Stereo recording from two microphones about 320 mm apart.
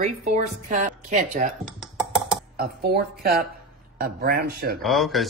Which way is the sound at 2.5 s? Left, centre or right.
Right.